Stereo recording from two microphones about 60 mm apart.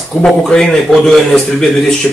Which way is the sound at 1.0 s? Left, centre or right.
Centre.